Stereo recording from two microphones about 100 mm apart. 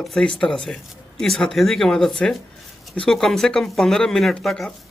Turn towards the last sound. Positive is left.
turn(degrees=5)  # may be behind; listen again after turning